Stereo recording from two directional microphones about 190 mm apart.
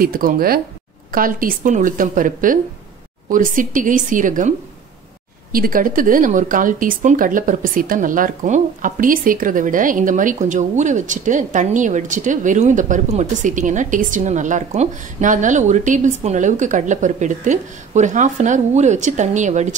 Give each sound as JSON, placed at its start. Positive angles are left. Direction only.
{"t": 0.0, "sound": "a woman's voice", "side_deg": -50}